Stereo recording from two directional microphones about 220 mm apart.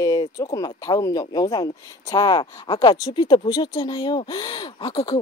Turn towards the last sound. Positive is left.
turn(degrees=20)  # may be behind; listen again after turning